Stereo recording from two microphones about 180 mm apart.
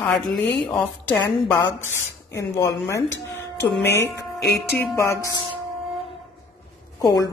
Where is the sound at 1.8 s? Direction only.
15° left (ahead or behind).